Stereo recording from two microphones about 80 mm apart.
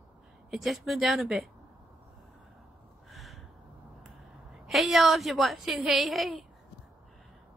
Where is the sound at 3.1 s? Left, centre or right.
Centre.